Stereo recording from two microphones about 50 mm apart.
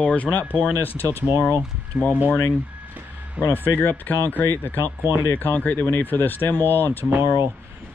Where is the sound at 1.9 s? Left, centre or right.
Centre.